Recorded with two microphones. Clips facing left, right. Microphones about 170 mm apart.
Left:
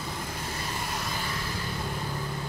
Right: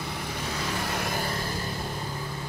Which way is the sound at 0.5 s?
70° right (ahead or behind).